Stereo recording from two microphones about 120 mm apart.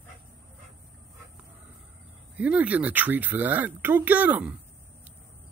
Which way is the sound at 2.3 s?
10° right (ahead or behind).